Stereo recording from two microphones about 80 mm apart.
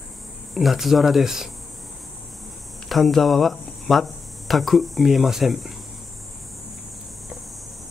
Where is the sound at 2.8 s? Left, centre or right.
Centre.